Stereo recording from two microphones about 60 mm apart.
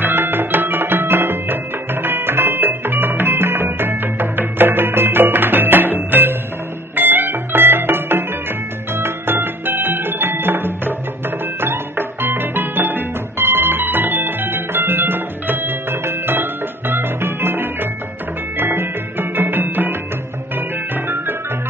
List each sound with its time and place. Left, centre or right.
0.0 s music: right